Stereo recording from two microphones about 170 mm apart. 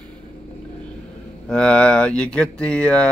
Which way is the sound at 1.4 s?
5° left (ahead or behind).